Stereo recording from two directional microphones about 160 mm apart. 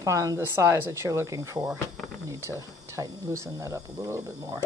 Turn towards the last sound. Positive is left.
turn(degrees=-20)  # may be behind; listen again after turning